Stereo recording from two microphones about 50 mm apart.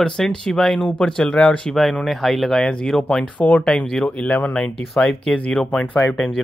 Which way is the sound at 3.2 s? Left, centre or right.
Left.